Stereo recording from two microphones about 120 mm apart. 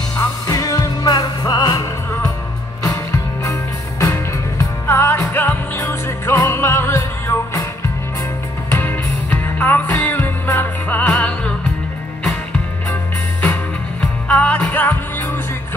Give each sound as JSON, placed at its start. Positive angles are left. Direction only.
{"t": 0.2, "sound": "music", "side_deg": 30}
{"t": 4.0, "sound": "music", "side_deg": 25}
{"t": 8.6, "sound": "music", "side_deg": 15}
{"t": 14.2, "sound": "music", "side_deg": 10}